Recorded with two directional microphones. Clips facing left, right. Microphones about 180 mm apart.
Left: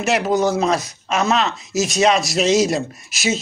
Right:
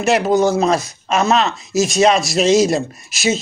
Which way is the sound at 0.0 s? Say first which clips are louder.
Right 3 dB; 30° right (ahead or behind).